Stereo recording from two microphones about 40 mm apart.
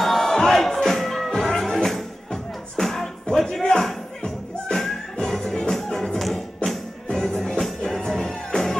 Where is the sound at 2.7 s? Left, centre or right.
Centre.